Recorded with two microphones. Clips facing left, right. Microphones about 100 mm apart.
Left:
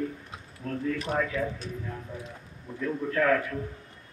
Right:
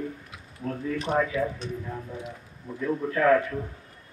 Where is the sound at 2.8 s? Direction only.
10° right (ahead or behind).